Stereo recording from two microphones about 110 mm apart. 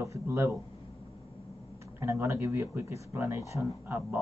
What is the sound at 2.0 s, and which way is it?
Speech, 25° right (ahead or behind).